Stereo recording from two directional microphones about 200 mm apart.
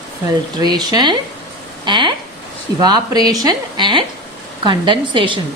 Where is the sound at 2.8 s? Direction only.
20° right (ahead or behind).